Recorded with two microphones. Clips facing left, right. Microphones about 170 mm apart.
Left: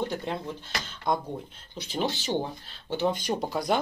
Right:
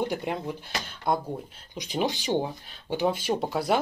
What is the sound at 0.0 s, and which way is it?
Speech, 15° right (ahead or behind).